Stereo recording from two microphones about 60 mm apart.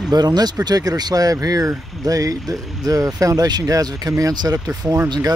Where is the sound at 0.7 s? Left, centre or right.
Right.